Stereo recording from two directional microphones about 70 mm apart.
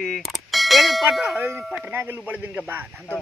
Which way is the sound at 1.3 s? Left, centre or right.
Right.